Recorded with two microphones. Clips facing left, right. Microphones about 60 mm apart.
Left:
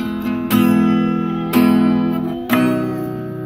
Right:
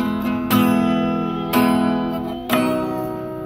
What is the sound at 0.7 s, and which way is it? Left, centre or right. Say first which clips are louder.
Music: left 3 dB; centre.